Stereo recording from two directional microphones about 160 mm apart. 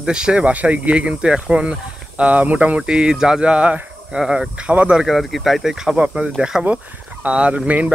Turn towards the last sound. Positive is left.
turn(degrees=-10)  # may be behind; listen again after turning